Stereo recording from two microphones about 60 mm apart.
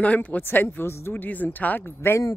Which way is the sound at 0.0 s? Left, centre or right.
Left.